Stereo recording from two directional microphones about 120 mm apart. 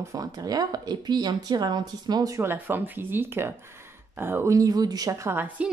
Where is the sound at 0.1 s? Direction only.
30° right (ahead or behind).